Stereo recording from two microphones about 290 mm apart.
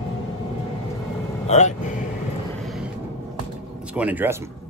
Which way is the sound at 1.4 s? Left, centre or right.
Left.